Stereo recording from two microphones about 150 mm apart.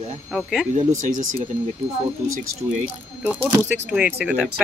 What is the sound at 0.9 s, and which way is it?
Speech, 55° right (ahead or behind).